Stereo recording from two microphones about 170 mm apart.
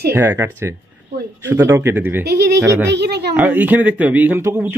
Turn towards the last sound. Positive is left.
turn(degrees=-10)  # may be behind; listen again after turning